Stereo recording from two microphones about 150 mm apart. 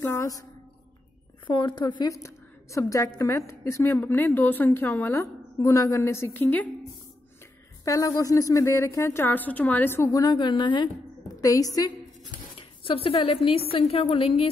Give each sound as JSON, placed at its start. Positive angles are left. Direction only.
{"t": 0.0, "sound": "a woman's voice", "side_deg": 20}
{"t": 1.5, "sound": "a woman's voice", "side_deg": 30}
{"t": 2.2, "sound": "a woman's voice", "side_deg": 20}
{"t": 7.8, "sound": "a woman's voice", "side_deg": 25}
{"t": 12.5, "sound": "a woman's voice", "side_deg": 35}